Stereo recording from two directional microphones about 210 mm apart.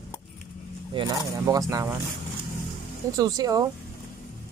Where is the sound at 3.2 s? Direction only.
15° right (ahead or behind).